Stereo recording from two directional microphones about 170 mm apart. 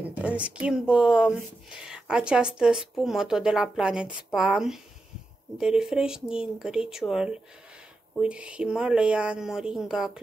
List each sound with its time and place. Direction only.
0.1 s speech: 10° right (ahead or behind)